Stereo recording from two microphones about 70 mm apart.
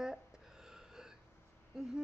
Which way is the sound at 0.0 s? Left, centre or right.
Centre.